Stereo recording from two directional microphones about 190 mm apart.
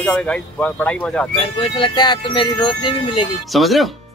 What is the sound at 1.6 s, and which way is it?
Speech, 25° left (ahead or behind).